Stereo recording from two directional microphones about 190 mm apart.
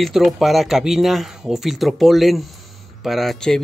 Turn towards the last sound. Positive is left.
turn(degrees=5)  # may be behind; listen again after turning